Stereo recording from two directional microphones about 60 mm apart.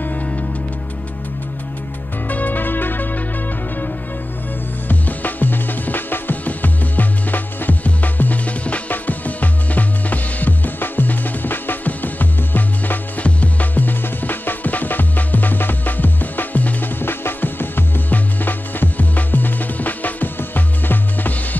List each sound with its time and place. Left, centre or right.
0.0 s music: left
2.2 s music: left
4.8 s music: left